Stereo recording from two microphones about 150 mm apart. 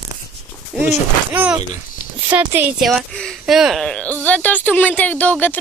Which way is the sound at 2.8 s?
Centre (ahead or behind).